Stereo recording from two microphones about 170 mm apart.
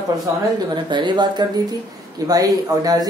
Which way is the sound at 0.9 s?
25° right (ahead or behind).